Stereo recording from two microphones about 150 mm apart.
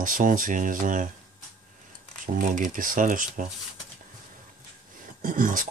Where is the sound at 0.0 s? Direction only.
65° right (ahead or behind).